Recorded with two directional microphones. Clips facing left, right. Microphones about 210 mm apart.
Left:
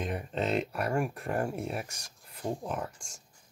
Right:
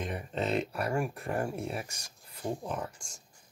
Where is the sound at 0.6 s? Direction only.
Centre (ahead or behind).